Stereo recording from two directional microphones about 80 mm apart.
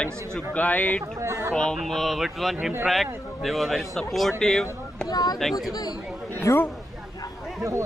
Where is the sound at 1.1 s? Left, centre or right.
Right.